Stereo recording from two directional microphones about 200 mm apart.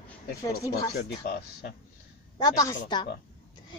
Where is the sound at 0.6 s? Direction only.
15° left (ahead or behind).